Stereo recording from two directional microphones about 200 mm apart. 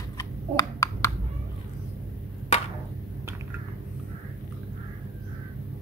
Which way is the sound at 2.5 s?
30° left (ahead or behind).